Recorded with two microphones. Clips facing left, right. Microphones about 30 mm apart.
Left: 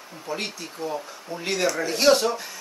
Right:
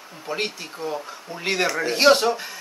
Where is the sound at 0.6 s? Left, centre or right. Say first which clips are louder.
Right 1 dB; centre.